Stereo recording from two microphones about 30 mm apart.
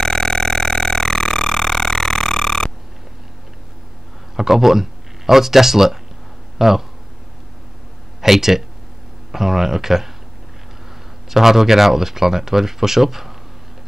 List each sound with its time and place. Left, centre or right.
0.0 s burping: left
4.4 s speech: centre
8.2 s speech: centre
11.2 s speech: centre